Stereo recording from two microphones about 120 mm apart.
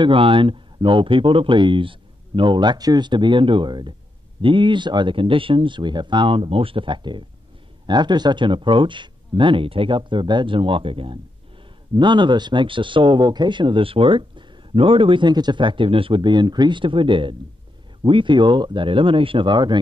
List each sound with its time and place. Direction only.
0.0 s speech: 50° right (ahead or behind)